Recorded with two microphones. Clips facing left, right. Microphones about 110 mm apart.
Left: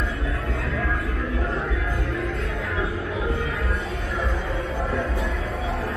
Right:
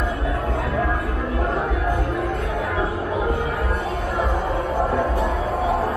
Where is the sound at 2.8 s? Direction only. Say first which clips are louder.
Right 3 dB; 40° right (ahead or behind).